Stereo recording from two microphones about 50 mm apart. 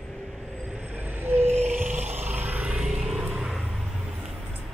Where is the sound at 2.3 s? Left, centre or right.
Right.